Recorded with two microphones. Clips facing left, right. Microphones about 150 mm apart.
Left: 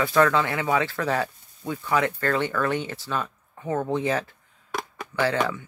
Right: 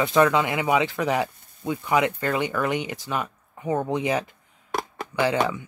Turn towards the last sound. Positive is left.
turn(degrees=-15)  # may be behind; listen again after turning